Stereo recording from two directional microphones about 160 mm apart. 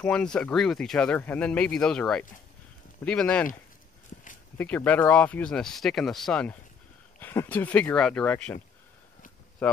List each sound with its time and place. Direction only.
0.0 s speech: 5° left (ahead or behind)
4.1 s a sound: 55° left (ahead or behind)
4.6 s speech: 10° left (ahead or behind)
9.6 s speech: 10° left (ahead or behind)